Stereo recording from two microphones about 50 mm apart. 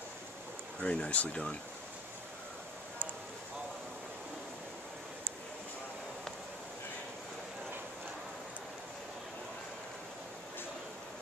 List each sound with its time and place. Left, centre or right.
0.8 s speech: left